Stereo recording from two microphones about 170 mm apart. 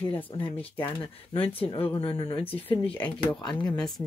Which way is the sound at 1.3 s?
35° left (ahead or behind).